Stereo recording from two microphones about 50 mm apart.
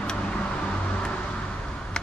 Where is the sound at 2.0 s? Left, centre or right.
Centre.